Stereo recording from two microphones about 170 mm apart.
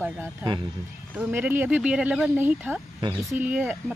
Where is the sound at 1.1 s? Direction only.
10° right (ahead or behind).